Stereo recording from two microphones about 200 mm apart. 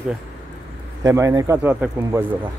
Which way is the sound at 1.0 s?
15° right (ahead or behind).